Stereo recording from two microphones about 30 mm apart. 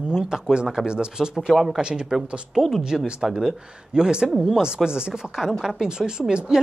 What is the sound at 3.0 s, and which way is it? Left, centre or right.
Speech, right.